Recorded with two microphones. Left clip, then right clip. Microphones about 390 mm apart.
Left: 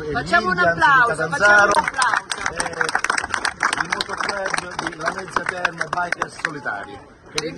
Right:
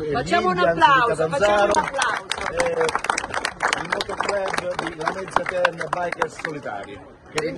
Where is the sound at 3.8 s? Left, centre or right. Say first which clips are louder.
Left 1 dB; centre.